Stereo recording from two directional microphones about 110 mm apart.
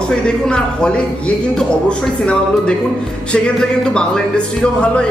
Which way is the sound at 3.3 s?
10° left (ahead or behind).